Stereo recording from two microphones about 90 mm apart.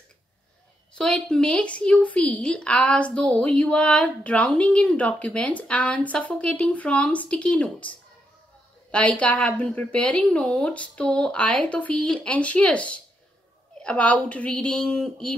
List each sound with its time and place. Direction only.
0.9 s a woman's voice: 10° left (ahead or behind)
8.9 s a woman's voice: 15° left (ahead or behind)